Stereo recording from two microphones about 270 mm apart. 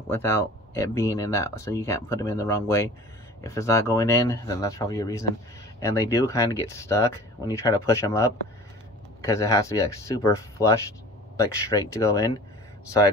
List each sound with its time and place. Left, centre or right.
0.1 s speech: centre